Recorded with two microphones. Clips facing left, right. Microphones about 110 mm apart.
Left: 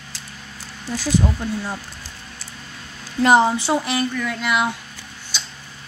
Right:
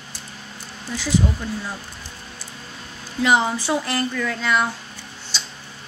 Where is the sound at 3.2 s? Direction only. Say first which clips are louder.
Left 4 dB; 35° left (ahead or behind).